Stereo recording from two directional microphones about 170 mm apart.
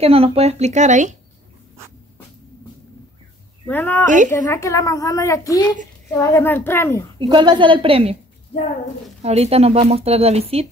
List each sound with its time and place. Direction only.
0.0 s speech: 35° right (ahead or behind)
3.6 s a child's voice: 10° left (ahead or behind)
7.2 s a woman's voice: 25° right (ahead or behind)
9.2 s speech: 40° right (ahead or behind)